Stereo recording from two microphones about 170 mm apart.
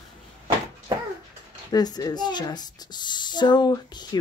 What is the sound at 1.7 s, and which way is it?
Speech, 25° left (ahead or behind).